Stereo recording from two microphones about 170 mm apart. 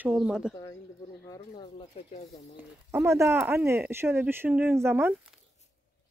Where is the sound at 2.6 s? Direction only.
15° right (ahead or behind).